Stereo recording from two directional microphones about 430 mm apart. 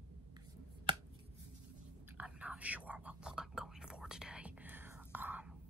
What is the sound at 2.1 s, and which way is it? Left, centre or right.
Whispering, centre.